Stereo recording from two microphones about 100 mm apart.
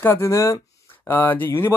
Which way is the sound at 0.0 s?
25° left (ahead or behind).